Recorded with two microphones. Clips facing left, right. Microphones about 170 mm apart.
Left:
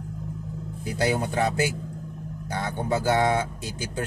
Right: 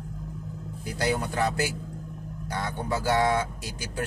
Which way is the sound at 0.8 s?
25° left (ahead or behind).